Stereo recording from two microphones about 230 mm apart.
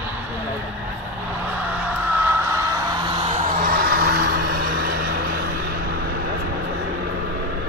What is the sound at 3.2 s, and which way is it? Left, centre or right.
Vehicle, right.